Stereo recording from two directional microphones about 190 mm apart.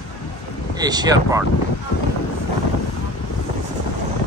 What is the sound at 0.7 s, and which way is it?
Speech, 20° right (ahead or behind).